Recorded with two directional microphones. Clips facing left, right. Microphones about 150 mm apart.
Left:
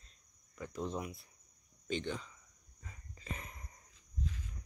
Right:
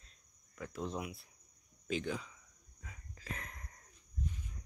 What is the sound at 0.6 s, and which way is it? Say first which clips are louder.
Speech: left 1 dB; centre (ahead or behind).